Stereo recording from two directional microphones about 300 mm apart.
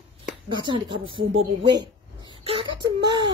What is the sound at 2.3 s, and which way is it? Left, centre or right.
Wail, centre.